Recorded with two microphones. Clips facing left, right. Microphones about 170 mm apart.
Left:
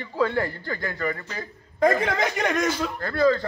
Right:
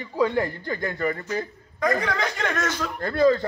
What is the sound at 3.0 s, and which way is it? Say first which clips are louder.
Speech: right 3 dB; 20° right (ahead or behind).